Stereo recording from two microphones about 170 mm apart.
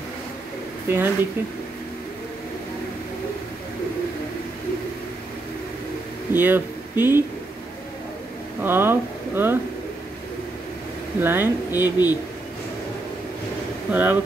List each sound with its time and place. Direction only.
0.8 s speech: 10° right (ahead or behind)
6.3 s speech: 10° right (ahead or behind)
8.6 s speech: 15° right (ahead or behind)
11.1 s speech: 10° right (ahead or behind)
11.7 s speech: 20° left (ahead or behind)
13.9 s speech: 10° right (ahead or behind)